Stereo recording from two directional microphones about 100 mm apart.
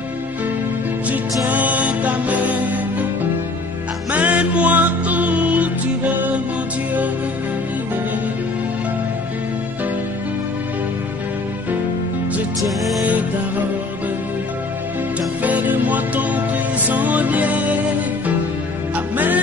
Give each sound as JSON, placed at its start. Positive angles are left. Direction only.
{"t": 1.0, "sound": "music", "side_deg": -15}
{"t": 4.1, "sound": "music", "side_deg": -15}
{"t": 12.5, "sound": "music", "side_deg": 0}
{"t": 15.4, "sound": "music", "side_deg": -15}
{"t": 18.9, "sound": "music", "side_deg": -15}